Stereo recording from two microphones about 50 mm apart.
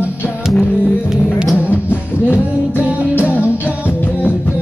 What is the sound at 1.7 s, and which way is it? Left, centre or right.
Music, left.